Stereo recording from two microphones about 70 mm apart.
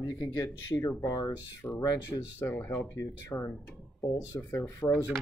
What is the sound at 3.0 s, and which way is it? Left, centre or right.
Speech, left.